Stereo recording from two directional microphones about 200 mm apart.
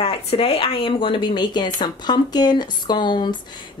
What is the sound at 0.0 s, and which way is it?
A woman's voice, 30° left (ahead or behind).